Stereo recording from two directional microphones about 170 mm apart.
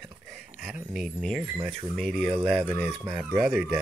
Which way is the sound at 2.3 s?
30° right (ahead or behind).